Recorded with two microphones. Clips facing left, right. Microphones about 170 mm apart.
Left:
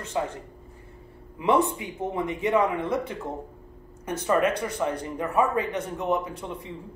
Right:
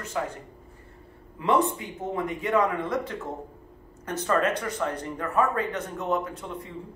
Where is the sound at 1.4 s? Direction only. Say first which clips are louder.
Left 1 dB; 20° left (ahead or behind).